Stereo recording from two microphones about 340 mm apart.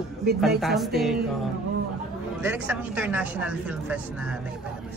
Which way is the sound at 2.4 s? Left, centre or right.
Centre.